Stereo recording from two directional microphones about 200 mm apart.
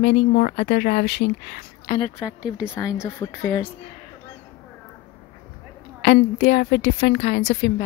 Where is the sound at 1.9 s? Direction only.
25° left (ahead or behind).